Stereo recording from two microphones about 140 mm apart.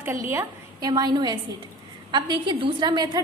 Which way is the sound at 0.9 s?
30° right (ahead or behind).